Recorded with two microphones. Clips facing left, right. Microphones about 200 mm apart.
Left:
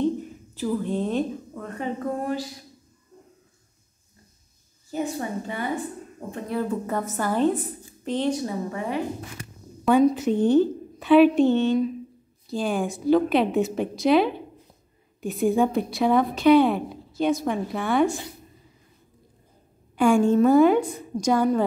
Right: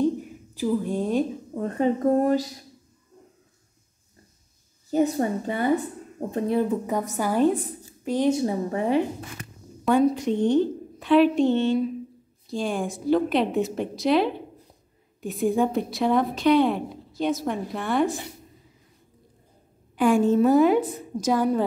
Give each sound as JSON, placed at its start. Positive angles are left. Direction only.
{"t": 0.0, "sound": "a sound", "side_deg": -10}
{"t": 1.5, "sound": "speech", "side_deg": -35}
{"t": 4.9, "sound": "speech", "side_deg": -40}
{"t": 6.5, "sound": "a woman's voice", "side_deg": -20}
{"t": 8.3, "sound": "a woman's voice", "side_deg": -25}
{"t": 9.8, "sound": "a woman's voice", "side_deg": 0}
{"t": 20.0, "sound": "a woman's voice", "side_deg": -5}